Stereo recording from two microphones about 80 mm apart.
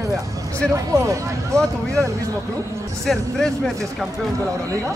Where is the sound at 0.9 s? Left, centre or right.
Right.